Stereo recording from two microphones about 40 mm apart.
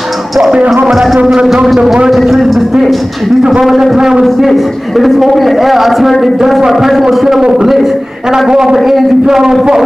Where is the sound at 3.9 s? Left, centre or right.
Centre.